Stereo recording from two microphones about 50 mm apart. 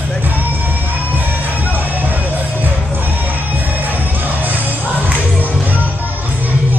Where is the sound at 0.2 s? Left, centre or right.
Right.